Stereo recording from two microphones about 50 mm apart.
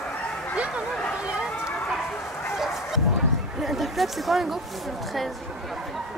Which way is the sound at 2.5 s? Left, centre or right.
Centre.